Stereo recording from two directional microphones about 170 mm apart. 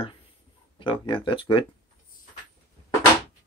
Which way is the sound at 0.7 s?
30° left (ahead or behind).